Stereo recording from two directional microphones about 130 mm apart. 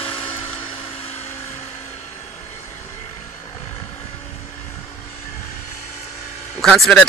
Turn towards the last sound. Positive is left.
turn(degrees=5)  # may be behind; listen again after turning